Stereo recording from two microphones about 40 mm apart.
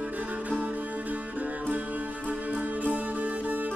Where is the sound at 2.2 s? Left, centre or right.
Right.